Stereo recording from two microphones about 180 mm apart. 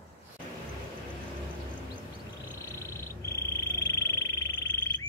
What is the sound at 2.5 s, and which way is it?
Frog, 15° left (ahead or behind).